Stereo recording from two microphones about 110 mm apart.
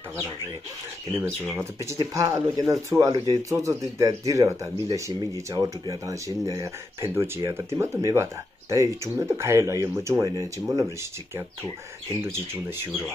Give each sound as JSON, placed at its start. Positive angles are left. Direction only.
{"t": 1.5, "sound": "speech", "side_deg": -25}